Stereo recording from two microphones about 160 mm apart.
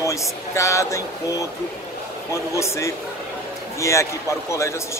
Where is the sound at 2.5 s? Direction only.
20° left (ahead or behind).